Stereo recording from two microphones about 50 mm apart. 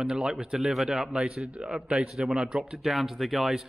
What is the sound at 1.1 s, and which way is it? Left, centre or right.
A man's voice, centre.